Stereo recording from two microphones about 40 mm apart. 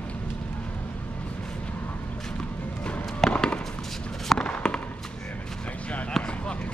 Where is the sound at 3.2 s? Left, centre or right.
Centre.